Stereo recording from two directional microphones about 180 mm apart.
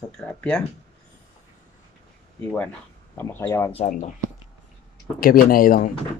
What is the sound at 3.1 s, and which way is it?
Speech, 10° left (ahead or behind).